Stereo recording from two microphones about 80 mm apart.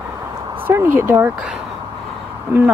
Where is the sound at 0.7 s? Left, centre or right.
Right.